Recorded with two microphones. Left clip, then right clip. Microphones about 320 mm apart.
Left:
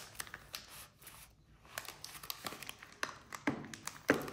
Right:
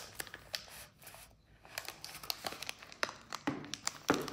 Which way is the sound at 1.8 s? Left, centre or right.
Centre.